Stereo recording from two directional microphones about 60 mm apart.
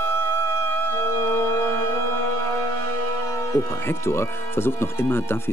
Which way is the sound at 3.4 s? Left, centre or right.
Left.